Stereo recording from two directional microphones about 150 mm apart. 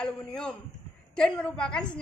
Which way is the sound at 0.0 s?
5° left (ahead or behind).